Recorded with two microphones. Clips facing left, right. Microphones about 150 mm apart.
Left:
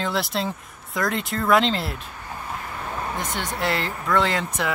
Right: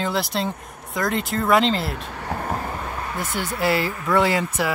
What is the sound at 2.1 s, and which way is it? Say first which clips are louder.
Vehicle: right 7 dB; 70° right (ahead or behind).